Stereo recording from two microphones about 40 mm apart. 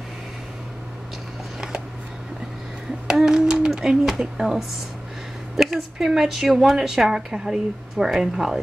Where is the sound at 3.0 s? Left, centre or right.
Centre.